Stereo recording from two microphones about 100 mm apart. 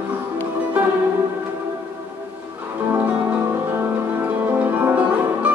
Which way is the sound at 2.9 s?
15° right (ahead or behind).